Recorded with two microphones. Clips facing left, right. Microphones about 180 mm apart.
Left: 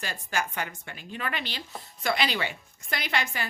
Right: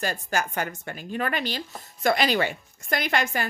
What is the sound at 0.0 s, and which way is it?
Speech, 45° right (ahead or behind).